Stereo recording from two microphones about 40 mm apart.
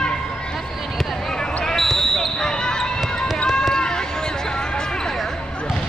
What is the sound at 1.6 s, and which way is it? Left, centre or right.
Basketball bounce, centre.